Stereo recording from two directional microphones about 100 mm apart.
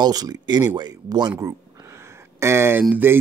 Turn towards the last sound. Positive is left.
turn(degrees=-20)  # may be behind; listen again after turning